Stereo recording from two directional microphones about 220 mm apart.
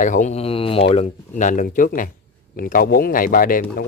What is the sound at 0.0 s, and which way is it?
Speech, 35° left (ahead or behind).